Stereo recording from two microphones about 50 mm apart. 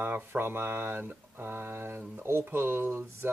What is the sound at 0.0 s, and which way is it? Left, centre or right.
Speech, right.